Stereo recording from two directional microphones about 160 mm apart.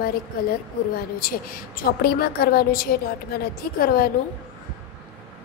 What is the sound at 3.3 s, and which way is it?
Speech, 90° left.